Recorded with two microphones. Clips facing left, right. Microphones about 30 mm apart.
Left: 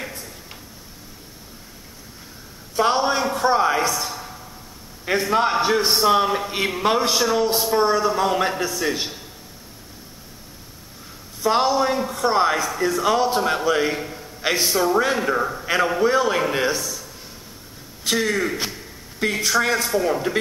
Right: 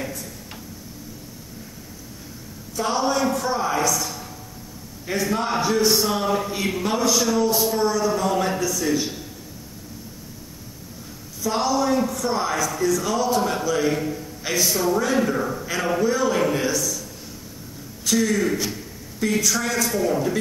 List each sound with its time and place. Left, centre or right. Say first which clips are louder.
2.7 s a sound: left 3 dB; left
5.0 s a man's voice: left 4 dB; left
11.4 s a man's voice: left 3 dB; left
14.0 s a man's voice: right 6 dB; centre
14.4 s a man's voice: left 2 dB; left
15.1 s a man's voice: even; left
15.6 s a sound: left 5 dB; left
16.0 s a man's voice: left 2 dB; left
18.0 s a man's voice: even; left